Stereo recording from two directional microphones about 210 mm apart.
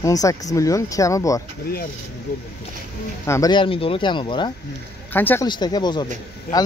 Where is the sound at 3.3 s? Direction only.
15° left (ahead or behind).